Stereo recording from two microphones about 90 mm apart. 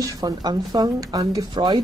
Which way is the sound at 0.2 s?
50° right (ahead or behind).